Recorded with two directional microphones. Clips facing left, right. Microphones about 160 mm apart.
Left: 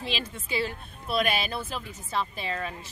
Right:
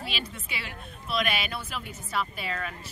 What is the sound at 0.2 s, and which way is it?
A woman's voice, 30° left (ahead or behind).